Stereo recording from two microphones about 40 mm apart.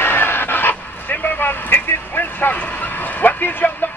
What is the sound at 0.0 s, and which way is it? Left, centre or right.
Dog, left.